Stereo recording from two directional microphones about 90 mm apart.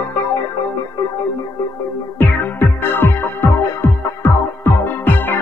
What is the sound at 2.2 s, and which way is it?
Music, 25° left (ahead or behind).